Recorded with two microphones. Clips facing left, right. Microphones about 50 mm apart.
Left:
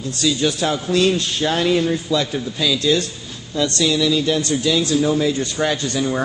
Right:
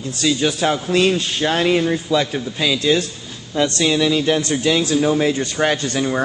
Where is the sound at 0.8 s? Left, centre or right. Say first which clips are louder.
Left 2 dB; centre.